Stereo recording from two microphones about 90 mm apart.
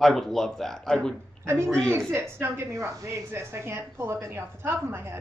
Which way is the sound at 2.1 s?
25° right (ahead or behind).